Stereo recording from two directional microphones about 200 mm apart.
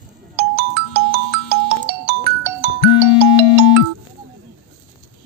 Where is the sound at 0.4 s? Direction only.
50° right (ahead or behind).